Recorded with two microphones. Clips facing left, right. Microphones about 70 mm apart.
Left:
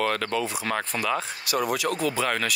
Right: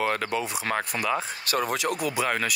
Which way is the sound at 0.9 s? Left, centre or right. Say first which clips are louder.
Left 1 dB; centre.